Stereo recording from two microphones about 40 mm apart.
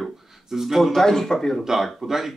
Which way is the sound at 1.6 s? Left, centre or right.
Centre.